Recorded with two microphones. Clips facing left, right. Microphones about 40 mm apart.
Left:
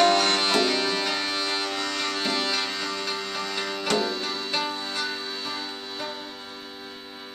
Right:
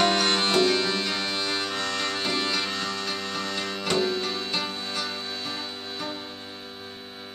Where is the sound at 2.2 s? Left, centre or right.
Centre.